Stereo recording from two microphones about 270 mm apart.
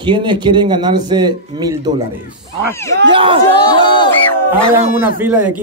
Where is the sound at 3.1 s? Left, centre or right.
Centre.